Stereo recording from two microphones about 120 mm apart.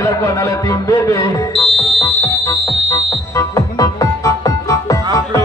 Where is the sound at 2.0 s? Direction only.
30° left (ahead or behind).